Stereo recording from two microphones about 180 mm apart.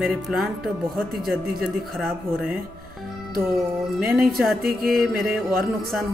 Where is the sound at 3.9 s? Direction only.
Centre (ahead or behind).